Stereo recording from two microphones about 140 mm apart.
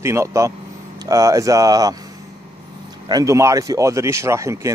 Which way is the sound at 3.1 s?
25° right (ahead or behind).